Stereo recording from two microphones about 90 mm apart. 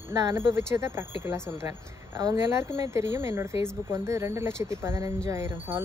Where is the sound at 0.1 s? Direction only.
30° right (ahead or behind).